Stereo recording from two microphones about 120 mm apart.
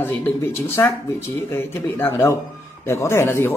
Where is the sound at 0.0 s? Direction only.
15° left (ahead or behind).